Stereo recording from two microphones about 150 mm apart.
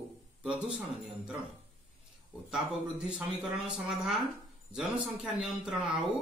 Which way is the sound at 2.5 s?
5° right (ahead or behind).